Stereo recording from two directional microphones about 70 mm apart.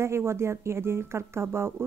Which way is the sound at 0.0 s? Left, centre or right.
Right.